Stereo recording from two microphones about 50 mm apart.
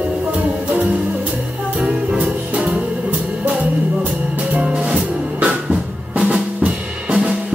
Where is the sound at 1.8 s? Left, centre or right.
Centre.